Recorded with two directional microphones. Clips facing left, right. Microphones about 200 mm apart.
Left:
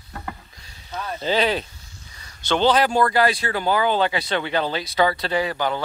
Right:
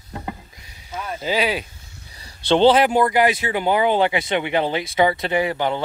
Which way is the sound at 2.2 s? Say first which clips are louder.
Right 5 dB; 30° right (ahead or behind).